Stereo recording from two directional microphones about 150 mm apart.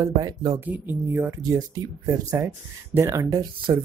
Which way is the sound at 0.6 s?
10° right (ahead or behind).